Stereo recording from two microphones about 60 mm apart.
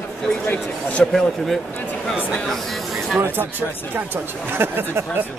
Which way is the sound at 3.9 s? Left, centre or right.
Right.